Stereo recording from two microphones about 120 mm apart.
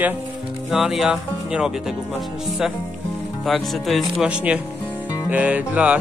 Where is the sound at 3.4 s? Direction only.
Centre (ahead or behind).